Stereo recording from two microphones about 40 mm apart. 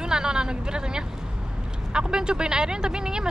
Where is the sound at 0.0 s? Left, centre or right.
Centre.